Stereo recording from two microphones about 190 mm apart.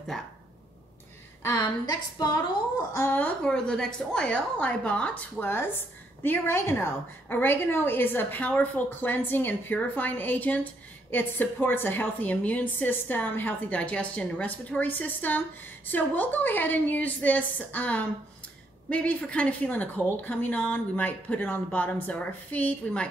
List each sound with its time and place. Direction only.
1.4 s a woman's voice: 20° left (ahead or behind)